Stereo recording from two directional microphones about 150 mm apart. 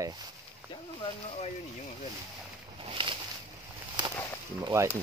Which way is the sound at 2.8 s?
35° right (ahead or behind).